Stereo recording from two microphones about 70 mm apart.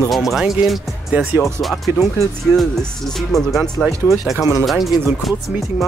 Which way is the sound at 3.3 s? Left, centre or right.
Centre.